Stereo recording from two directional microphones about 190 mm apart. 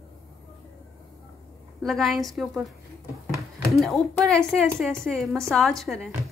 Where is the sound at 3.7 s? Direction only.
Centre (ahead or behind).